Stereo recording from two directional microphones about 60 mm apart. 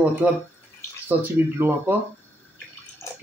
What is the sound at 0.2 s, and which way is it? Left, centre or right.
Speech, right.